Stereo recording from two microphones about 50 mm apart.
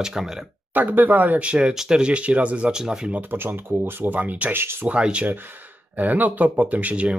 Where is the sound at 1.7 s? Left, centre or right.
Centre.